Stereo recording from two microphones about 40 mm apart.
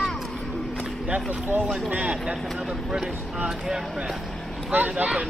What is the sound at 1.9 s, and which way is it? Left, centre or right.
Speech, right.